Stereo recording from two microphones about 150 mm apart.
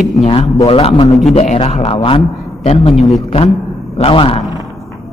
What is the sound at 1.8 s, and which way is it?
A man's voice, 35° left (ahead or behind).